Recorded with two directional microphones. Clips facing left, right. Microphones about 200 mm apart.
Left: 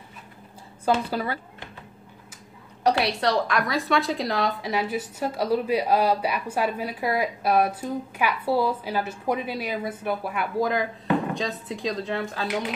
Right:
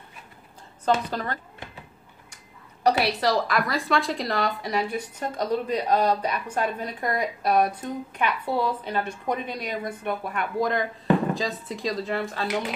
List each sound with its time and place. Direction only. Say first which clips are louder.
1.1 s speech: left 2 dB; 10° left (ahead or behind)
2.8 s a woman's voice: even; centre (ahead or behind)